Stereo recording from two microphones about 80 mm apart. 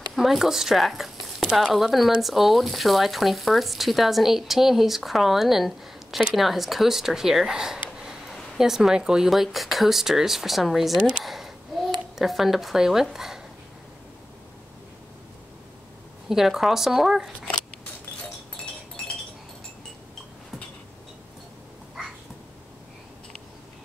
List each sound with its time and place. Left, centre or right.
0.1 s speech: centre
11.2 s a sound: centre
12.2 s speech: centre
16.3 s speech: centre